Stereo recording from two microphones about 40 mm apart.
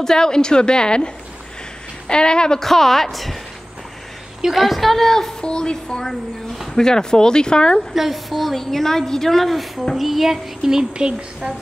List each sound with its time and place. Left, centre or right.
0.0 s a woman's voice: centre
2.6 s a woman's voice: centre
4.6 s a woman's voice: centre
5.4 s a woman's voice: left
7.9 s a woman's voice: centre; by 11.5 s right